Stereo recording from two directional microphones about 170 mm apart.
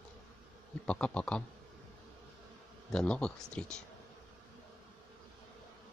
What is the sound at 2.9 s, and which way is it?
Speech, 5° left (ahead or behind).